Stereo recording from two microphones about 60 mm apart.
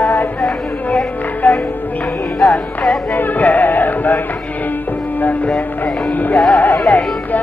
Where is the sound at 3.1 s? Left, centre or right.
Left.